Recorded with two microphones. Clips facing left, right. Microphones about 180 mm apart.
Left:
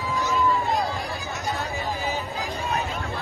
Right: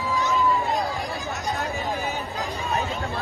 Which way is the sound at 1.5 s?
15° right (ahead or behind).